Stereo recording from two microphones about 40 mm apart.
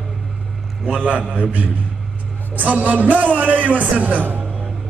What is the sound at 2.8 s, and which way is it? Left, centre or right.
Speech, right.